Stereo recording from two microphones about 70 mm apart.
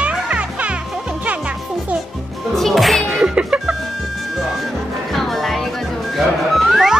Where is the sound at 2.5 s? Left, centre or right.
Centre.